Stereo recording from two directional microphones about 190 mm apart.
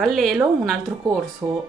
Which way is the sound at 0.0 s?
Centre (ahead or behind).